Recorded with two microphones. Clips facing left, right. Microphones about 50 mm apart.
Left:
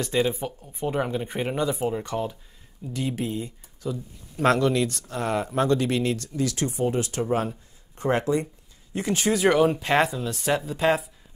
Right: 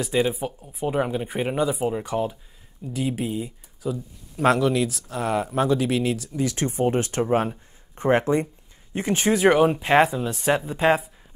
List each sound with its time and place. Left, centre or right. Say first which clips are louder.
0.0 s speech: right 1 dB; centre
6.3 s speech: right 2 dB; right